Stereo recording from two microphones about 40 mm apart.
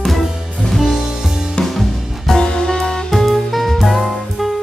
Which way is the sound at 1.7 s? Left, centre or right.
Centre.